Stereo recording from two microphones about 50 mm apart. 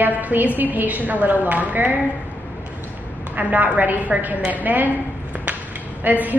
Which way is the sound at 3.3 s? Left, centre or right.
Right.